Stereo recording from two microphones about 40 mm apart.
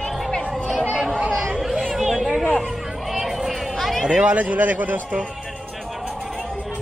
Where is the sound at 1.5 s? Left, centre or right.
Centre.